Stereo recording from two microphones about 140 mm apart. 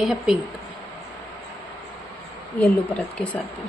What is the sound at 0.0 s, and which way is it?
Speech, 5° right (ahead or behind).